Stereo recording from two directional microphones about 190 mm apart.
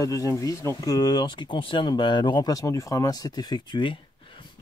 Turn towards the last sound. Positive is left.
turn(degrees=25)  # may be behind; listen again after turning